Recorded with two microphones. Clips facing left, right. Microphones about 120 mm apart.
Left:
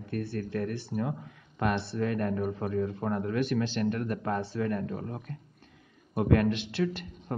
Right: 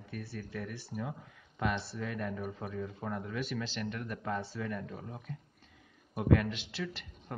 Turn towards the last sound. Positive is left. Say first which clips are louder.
# left 9 dB
turn(degrees=50)  # may be behind; listen again after turning